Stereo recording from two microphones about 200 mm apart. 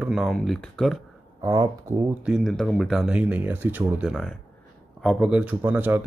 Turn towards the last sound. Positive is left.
turn(degrees=-10)  # may be behind; listen again after turning